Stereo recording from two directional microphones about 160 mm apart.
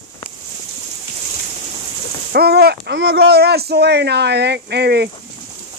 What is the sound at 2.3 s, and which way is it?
Speech, 80° right.